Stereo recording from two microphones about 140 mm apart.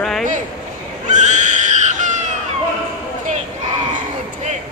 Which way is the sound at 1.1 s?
60° right (ahead or behind).